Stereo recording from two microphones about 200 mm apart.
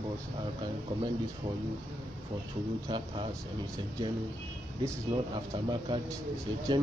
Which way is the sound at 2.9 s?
25° right (ahead or behind).